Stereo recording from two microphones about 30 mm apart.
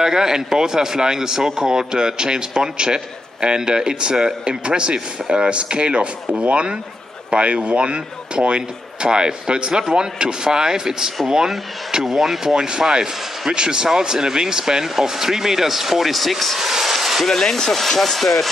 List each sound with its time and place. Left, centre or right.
0.0 s speech: centre
12.0 s speech: centre
12.6 s speech: right
17.3 s speech: centre